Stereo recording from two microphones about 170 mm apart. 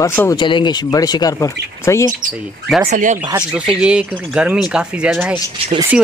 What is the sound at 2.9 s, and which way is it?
Speech, 45° right (ahead or behind).